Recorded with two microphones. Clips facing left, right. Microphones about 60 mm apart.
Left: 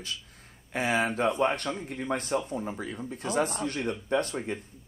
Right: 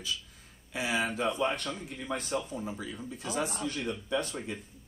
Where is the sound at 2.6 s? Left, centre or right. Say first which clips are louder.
Left 3 dB; left.